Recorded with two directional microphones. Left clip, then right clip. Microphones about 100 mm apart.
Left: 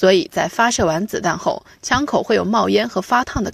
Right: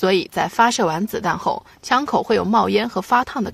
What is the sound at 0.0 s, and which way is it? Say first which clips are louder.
Speech: left 4 dB; 30° left (ahead or behind).